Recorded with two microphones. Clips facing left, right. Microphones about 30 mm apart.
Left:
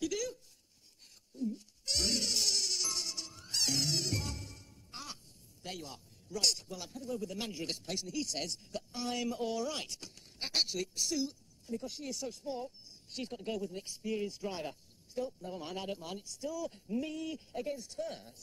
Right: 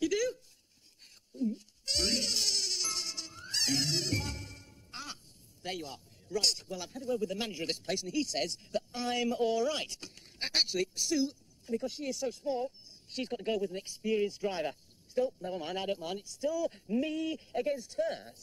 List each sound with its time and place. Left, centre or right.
0.0 s a sound: right
1.3 s music: right
6.4 s speech: centre